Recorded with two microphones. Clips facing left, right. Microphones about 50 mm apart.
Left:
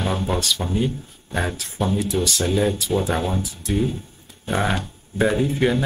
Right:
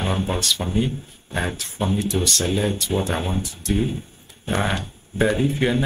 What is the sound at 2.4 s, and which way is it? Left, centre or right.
Speech, centre.